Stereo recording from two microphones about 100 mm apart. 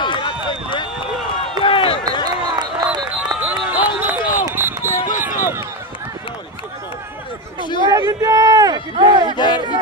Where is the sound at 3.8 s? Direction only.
15° right (ahead or behind).